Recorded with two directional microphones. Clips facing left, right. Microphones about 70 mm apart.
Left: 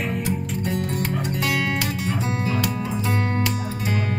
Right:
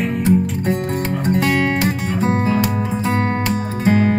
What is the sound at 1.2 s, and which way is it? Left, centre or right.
Music, right.